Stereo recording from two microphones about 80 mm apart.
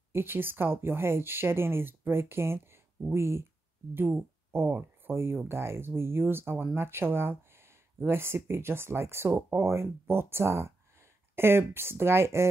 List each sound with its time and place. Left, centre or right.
0.1 s speech: right